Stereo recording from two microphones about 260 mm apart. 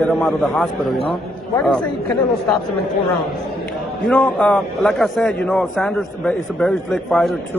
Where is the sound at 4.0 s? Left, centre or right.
Centre.